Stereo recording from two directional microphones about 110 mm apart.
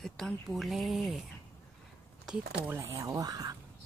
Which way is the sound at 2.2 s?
5° right (ahead or behind).